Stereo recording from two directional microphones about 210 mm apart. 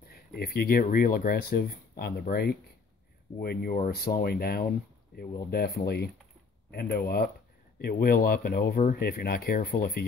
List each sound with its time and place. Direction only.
0.0 s speech: 45° left (ahead or behind)